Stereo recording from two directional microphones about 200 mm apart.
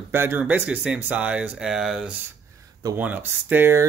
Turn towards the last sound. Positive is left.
turn(degrees=-10)  # may be behind; listen again after turning